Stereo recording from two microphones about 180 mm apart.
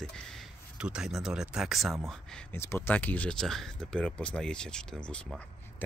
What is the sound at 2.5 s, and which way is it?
Speech, 15° left (ahead or behind).